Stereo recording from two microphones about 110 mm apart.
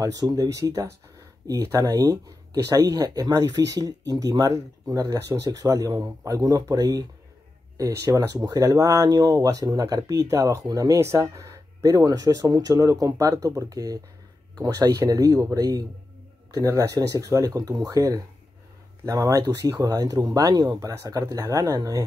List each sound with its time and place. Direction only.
0.0 s speech: 35° right (ahead or behind)